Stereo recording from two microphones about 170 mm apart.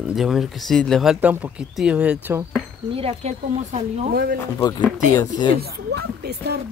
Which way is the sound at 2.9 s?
35° right (ahead or behind).